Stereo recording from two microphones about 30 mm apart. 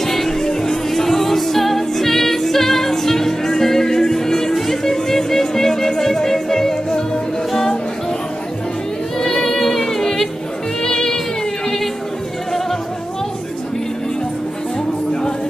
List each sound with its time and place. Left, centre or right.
0.0 s music: centre
9.2 s singing: centre
9.8 s a sound: centre
10.8 s music: centre